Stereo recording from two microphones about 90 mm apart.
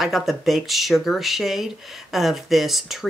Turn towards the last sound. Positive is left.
turn(degrees=0)  # may be behind; listen again after turning